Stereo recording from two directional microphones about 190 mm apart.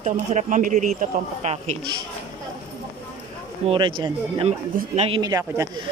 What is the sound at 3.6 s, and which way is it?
Speech, 25° right (ahead or behind).